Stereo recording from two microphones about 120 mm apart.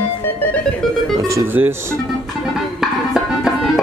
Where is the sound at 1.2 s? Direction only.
20° right (ahead or behind).